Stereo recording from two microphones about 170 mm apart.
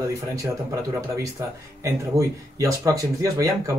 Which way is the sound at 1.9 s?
20° right (ahead or behind).